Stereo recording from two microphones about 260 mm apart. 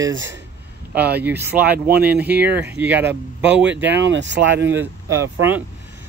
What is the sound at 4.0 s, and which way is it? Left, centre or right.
Speech, right.